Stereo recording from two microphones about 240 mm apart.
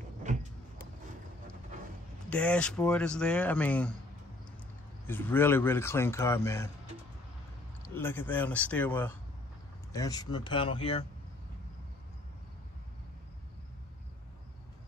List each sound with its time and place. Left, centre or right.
2.2 s speech: centre
5.0 s speech: centre
7.8 s speech: centre